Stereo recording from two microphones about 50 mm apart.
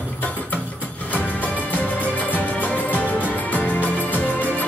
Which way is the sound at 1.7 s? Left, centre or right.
Left.